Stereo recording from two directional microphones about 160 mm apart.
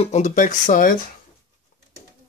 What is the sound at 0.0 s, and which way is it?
Speech, 45° left (ahead or behind).